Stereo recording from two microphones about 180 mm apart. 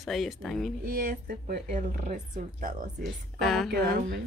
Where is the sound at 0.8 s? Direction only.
50° right (ahead or behind).